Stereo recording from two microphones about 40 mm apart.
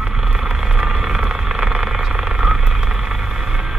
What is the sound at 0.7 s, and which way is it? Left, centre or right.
Vehicle, centre.